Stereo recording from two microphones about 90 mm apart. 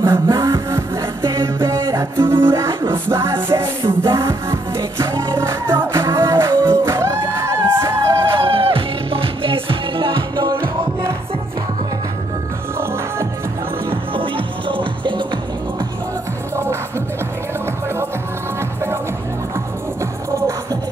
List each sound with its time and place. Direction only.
0.0 s music: 30° right (ahead or behind)
8.4 s music: 90° right; by 10.5 s 65° right (ahead or behind)
10.6 s music: 30° right (ahead or behind)
14.1 s music: 75° right (ahead or behind)